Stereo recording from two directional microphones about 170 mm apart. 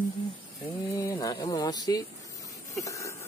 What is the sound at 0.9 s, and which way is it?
Speech, 20° left (ahead or behind).